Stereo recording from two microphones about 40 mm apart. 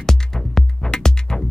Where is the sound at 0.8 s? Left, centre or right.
Centre.